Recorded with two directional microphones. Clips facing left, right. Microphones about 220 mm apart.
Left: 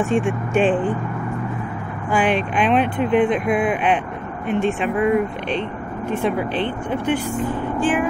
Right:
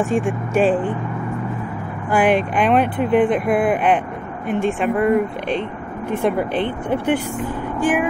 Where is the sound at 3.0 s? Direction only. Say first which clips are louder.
Right 1 dB; 50° right (ahead or behind).